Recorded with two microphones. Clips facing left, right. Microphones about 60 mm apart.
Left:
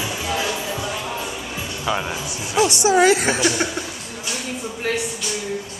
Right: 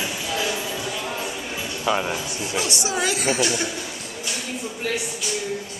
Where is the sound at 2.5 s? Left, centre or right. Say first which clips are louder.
Left 10 dB; left.